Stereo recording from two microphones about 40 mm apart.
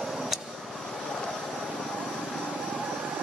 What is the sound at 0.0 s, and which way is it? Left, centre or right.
Vehicle, centre.